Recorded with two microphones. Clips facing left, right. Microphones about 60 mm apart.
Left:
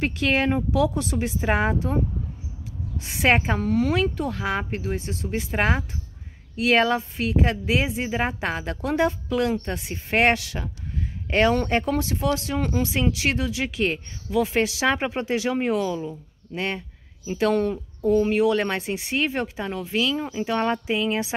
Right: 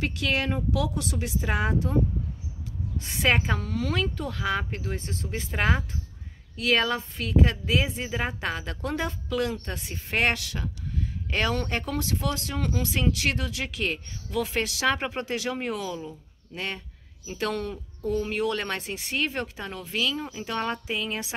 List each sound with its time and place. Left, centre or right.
0.0 s a woman's voice: left
3.2 s a woman's voice: left
4.9 s speech: centre
5.5 s a woman's voice: left